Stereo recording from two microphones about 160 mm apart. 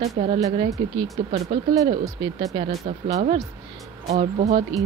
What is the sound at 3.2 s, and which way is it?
Speech, 45° right (ahead or behind).